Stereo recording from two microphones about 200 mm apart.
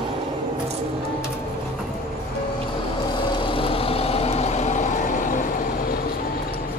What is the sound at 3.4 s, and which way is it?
Vehicle, 25° left (ahead or behind).